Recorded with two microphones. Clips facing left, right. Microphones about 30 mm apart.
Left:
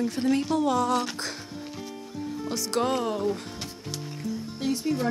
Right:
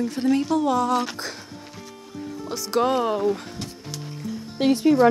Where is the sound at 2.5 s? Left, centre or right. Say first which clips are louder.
Right 5 dB; centre.